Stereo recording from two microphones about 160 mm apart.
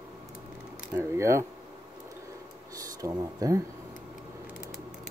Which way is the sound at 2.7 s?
20° right (ahead or behind).